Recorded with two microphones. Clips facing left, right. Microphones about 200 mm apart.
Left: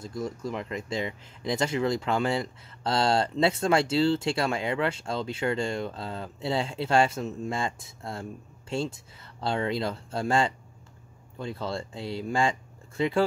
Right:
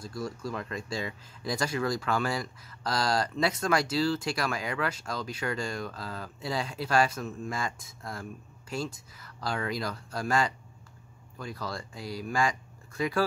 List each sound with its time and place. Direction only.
0.0 s speech: 20° left (ahead or behind)